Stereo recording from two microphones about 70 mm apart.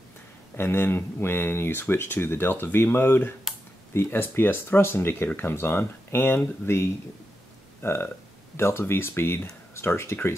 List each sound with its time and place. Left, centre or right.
0.6 s speech: left